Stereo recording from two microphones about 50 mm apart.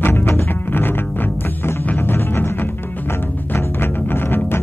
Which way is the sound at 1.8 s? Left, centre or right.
Left.